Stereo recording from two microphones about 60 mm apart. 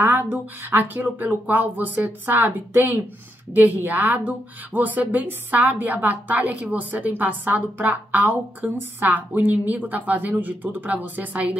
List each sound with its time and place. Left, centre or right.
0.0 s a woman's voice: right